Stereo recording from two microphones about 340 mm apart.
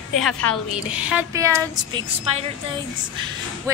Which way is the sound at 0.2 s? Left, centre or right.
Centre.